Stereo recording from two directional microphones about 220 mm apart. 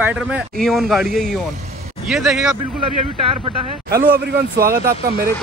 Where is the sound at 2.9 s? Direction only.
25° right (ahead or behind).